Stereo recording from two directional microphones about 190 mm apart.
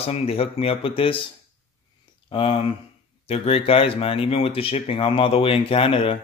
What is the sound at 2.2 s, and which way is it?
Speech, 30° left (ahead or behind).